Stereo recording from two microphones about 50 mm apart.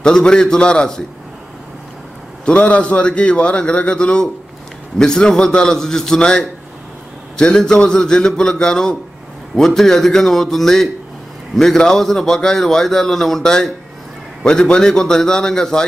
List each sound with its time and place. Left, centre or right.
0.0 s a man's voice: centre
2.4 s a man's voice: left; by 15.8 s centre